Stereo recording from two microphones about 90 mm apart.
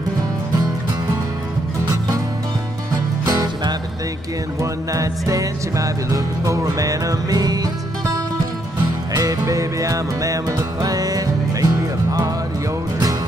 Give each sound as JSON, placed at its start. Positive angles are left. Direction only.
{"t": 3.3, "sound": "music", "side_deg": -45}
{"t": 9.1, "sound": "music", "side_deg": -45}